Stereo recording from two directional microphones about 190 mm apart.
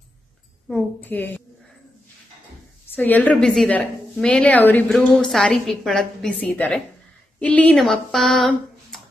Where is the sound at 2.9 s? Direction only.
10° left (ahead or behind).